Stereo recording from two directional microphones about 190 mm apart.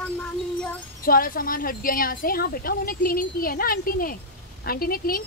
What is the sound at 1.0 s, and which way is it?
A woman's voice, 50° left (ahead or behind).